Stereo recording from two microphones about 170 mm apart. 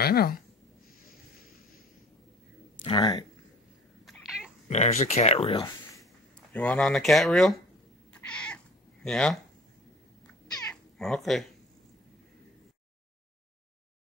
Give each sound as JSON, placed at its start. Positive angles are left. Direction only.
{"t": 0.0, "sound": "speech", "side_deg": 65}
{"t": 2.8, "sound": "speech", "side_deg": 30}
{"t": 4.0, "sound": "cat", "side_deg": 0}
{"t": 4.6, "sound": "speech", "side_deg": 40}
{"t": 6.5, "sound": "speech", "side_deg": 5}
{"t": 8.1, "sound": "cat", "side_deg": 5}
{"t": 9.0, "sound": "speech", "side_deg": 5}
{"t": 10.2, "sound": "cat", "side_deg": 5}